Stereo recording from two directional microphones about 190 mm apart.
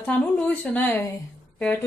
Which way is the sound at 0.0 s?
10° left (ahead or behind).